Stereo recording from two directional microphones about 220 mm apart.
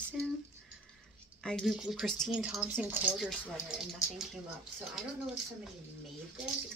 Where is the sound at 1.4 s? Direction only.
5° left (ahead or behind).